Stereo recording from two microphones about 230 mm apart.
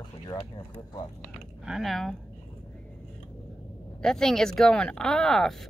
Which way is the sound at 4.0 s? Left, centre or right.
Centre.